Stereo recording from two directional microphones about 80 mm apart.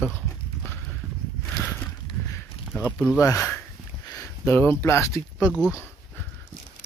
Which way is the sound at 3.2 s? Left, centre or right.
Left.